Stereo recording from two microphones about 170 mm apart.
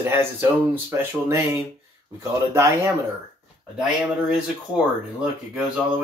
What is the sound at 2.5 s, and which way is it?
Speech, 15° right (ahead or behind).